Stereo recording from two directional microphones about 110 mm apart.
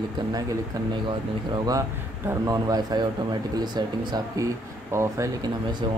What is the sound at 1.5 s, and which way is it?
Speech, 35° right (ahead or behind).